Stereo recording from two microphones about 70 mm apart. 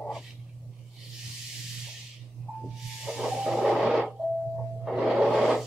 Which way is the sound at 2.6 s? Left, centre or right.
Centre.